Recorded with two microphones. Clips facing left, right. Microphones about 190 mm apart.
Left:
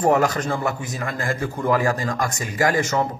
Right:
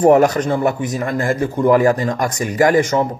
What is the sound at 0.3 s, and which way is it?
Speech, 25° right (ahead or behind).